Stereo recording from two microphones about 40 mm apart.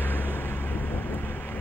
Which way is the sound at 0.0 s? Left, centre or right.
Left.